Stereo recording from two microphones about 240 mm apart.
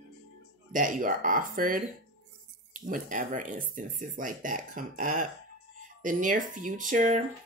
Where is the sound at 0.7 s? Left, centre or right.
Right.